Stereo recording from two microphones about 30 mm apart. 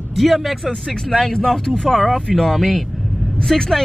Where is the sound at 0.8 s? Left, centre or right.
Centre.